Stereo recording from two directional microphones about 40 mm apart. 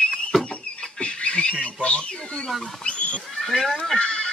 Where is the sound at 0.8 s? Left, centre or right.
Left.